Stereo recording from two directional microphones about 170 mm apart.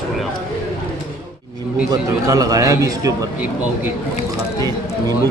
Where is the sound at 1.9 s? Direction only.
20° right (ahead or behind).